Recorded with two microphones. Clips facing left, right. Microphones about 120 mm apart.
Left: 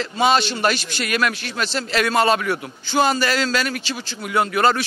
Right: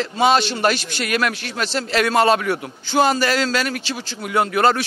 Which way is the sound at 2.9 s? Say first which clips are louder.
Right 2 dB; 60° right (ahead or behind).